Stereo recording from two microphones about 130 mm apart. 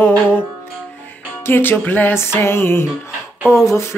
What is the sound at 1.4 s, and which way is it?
Music, 15° left (ahead or behind).